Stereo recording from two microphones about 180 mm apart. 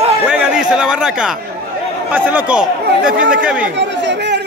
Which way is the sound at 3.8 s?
80° right.